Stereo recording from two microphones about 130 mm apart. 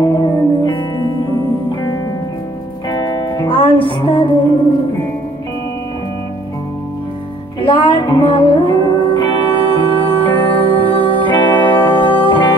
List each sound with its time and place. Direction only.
0.0 s music: 35° left (ahead or behind)
2.9 s music: 30° left (ahead or behind)
7.6 s music: 40° left (ahead or behind)